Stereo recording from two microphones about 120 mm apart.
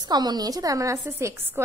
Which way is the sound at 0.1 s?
35° right (ahead or behind).